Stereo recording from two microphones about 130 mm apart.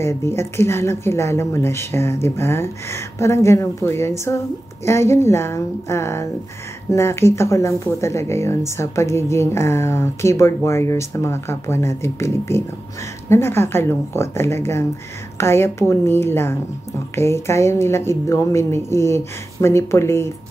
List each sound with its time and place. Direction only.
0.0 s speech: 20° left (ahead or behind)